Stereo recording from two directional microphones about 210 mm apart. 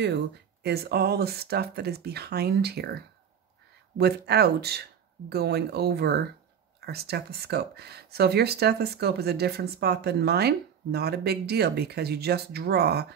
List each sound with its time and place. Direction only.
0.0 s speech: 55° right (ahead or behind)
4.0 s speech: 50° right (ahead or behind)